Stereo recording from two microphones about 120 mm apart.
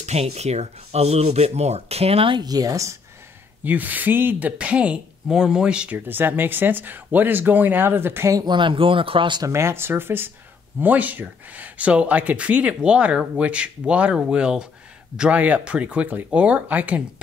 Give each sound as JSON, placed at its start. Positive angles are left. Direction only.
{"t": 0.0, "sound": "speech", "side_deg": -65}
{"t": 2.3, "sound": "speech", "side_deg": -35}
{"t": 3.6, "sound": "speech", "side_deg": -15}
{"t": 8.5, "sound": "speech", "side_deg": -45}
{"t": 9.5, "sound": "speech", "side_deg": -20}